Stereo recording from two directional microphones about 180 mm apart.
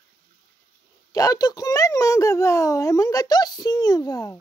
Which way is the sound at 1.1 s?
20° left (ahead or behind).